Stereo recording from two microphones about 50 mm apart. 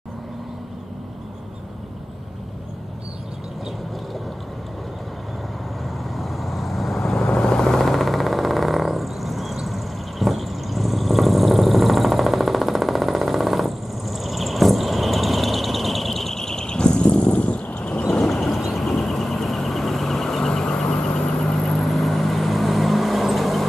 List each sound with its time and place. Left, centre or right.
6.1 s vehicle: centre
7.2 s vehicle: left
18.2 s vehicle: centre
21.6 s vehicle: centre